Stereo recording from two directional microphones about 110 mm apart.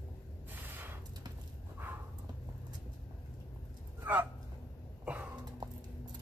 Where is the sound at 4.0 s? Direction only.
15° right (ahead or behind).